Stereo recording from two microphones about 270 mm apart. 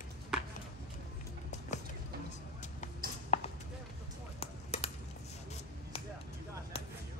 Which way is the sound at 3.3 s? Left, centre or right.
Left.